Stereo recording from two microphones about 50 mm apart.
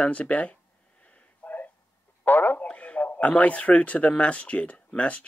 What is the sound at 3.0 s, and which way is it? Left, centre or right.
Speech, left.